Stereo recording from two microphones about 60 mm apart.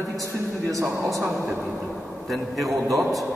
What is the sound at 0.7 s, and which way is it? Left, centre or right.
Speech, right.